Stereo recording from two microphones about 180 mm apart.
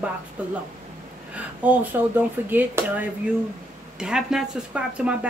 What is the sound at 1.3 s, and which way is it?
A woman's voice, 10° right (ahead or behind).